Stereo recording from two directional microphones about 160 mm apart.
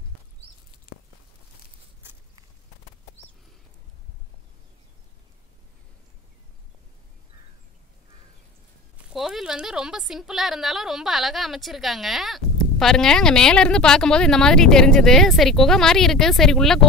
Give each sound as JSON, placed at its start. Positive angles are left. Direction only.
{"t": 9.1, "sound": "speech", "side_deg": 0}